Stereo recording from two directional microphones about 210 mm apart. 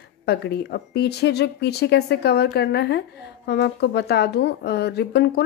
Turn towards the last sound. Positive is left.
turn(degrees=50)  # may be behind; listen again after turning